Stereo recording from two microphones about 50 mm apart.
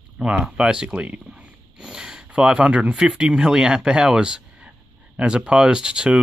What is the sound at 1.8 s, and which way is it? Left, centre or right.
Speech, centre.